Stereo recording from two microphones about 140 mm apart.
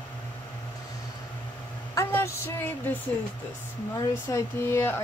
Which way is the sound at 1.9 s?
20° left (ahead or behind).